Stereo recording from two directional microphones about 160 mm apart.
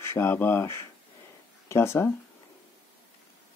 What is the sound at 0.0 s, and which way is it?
Speech, 15° left (ahead or behind).